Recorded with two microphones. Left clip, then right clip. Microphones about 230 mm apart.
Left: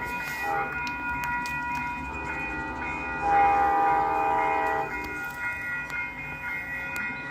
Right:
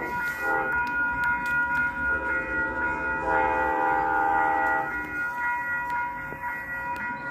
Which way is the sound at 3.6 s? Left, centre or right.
Left.